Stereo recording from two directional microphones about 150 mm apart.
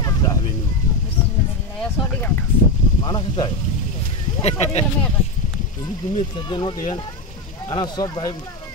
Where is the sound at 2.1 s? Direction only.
15° left (ahead or behind).